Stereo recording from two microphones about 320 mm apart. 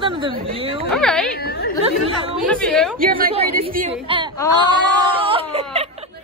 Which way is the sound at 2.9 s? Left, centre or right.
Right.